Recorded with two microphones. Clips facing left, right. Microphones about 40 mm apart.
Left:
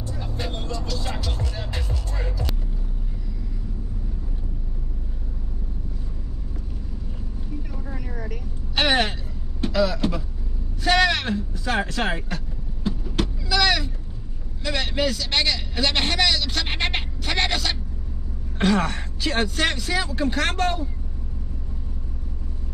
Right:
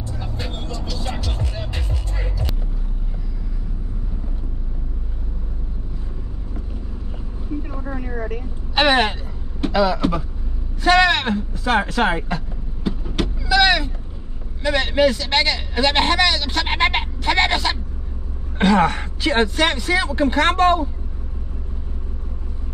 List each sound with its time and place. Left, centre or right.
0.4 s vehicle: centre
8.3 s vehicle: right
9.6 s a sound: right
10.8 s vehicle: right
14.6 s speech: right